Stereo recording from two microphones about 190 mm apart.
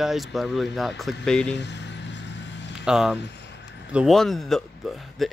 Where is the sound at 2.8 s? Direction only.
5° right (ahead or behind).